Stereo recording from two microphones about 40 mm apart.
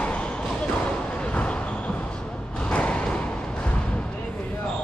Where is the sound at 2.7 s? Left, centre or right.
Left.